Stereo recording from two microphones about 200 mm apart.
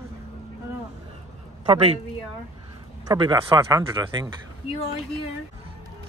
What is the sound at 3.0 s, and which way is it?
Speech, 20° right (ahead or behind).